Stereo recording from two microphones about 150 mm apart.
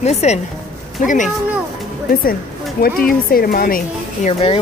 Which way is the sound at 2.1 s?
75° left (ahead or behind).